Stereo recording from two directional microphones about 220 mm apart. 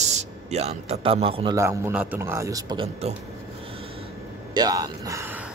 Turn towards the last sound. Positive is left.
turn(degrees=-10)  # may be behind; listen again after turning